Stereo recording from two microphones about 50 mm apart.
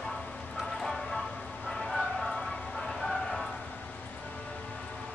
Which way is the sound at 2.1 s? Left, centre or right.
Centre.